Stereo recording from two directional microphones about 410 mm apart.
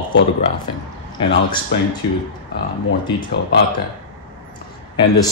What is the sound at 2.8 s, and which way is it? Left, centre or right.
Speech, left.